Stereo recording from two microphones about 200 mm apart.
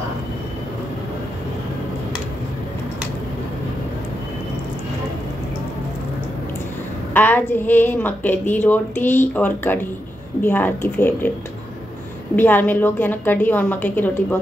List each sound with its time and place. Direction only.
7.2 s a woman's voice: 10° left (ahead or behind)
12.4 s a woman's voice: 10° left (ahead or behind)